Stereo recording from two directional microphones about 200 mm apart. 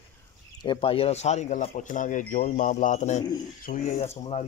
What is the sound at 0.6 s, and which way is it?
Speech, 25° left (ahead or behind).